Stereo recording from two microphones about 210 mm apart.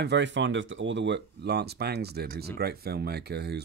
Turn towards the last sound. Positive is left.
turn(degrees=-50)  # may be behind; listen again after turning